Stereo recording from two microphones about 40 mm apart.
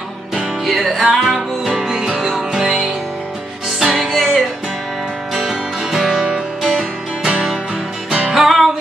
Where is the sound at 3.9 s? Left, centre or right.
Centre.